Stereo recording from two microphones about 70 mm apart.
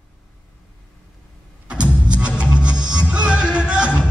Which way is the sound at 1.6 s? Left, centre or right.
Centre.